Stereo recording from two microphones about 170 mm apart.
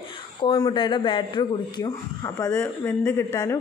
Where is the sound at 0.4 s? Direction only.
25° left (ahead or behind).